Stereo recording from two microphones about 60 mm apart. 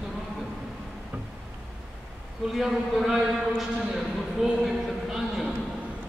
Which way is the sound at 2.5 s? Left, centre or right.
Centre.